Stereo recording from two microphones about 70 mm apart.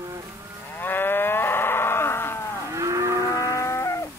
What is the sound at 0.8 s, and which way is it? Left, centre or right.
Livestock, left.